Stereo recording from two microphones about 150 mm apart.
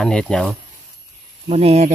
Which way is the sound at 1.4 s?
45° right (ahead or behind).